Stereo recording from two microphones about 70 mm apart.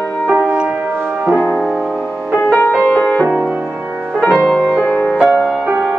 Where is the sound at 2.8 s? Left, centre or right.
Left.